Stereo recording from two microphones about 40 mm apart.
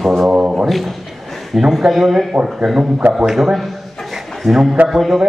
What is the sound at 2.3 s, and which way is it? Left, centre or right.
Speech, centre.